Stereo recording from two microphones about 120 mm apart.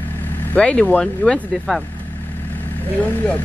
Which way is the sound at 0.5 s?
10° left (ahead or behind).